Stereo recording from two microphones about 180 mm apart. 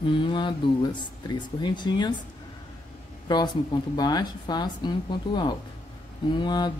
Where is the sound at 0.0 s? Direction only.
25° left (ahead or behind).